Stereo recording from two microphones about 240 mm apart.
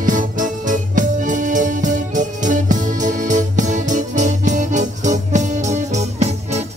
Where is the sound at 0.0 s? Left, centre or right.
Right.